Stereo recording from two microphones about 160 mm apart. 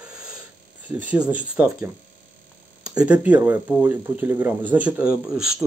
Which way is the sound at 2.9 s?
5° right (ahead or behind).